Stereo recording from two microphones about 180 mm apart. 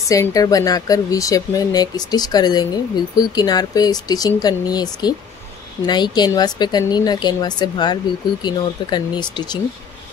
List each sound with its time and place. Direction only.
0.1 s speech: 20° left (ahead or behind)